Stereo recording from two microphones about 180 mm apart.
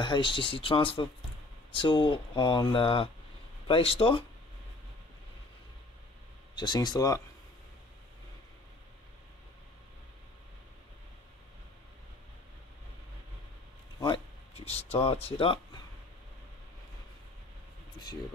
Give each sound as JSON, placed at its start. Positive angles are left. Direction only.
{"t": 0.0, "sound": "speech", "side_deg": 25}
{"t": 6.6, "sound": "speech", "side_deg": 25}
{"t": 13.9, "sound": "a sound", "side_deg": 20}
{"t": 14.5, "sound": "speech", "side_deg": 35}